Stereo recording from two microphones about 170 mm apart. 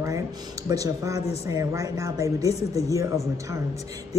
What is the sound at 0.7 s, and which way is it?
Speech, 20° right (ahead or behind).